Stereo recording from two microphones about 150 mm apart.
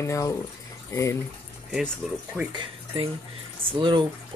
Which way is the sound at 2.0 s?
10° right (ahead or behind).